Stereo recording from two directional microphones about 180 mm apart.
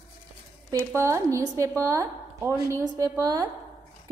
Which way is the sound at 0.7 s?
15° right (ahead or behind).